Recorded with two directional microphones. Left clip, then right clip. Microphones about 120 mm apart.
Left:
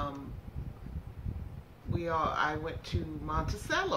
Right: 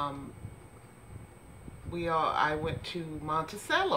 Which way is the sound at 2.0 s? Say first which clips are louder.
Right 3 dB; 25° right (ahead or behind).